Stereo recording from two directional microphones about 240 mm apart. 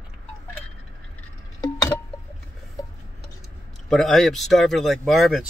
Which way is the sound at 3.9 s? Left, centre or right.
Centre.